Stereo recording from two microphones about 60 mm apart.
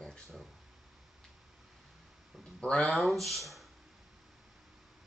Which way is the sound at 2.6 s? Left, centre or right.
Centre.